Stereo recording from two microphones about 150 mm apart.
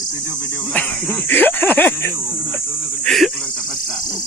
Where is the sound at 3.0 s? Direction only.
5° left (ahead or behind).